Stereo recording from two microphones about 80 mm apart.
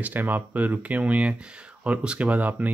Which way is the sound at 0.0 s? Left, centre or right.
Right.